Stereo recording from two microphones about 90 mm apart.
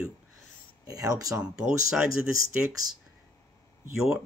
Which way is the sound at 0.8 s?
45° right (ahead or behind).